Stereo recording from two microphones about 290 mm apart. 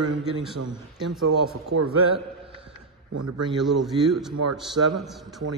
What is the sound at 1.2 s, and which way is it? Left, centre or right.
Speech, right.